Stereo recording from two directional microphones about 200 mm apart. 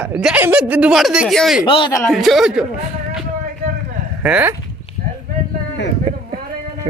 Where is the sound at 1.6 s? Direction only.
25° left (ahead or behind).